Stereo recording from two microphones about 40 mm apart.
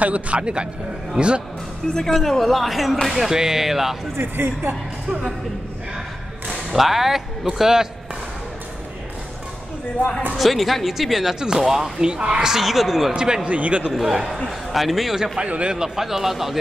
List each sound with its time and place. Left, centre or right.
0.0 s speech: right
0.4 s a woman's voice: right
2.0 s a man's voice: centre
4.2 s speech: right
6.7 s a man's voice: centre
10.3 s speech: centre
11.3 s a man's voice: centre
12.1 s a woman's voice: right
12.4 s speech: centre
13.1 s a woman's voice: centre
13.5 s speech: right
13.9 s a man's voice: centre
15.3 s speech: right
15.7 s a man's voice: centre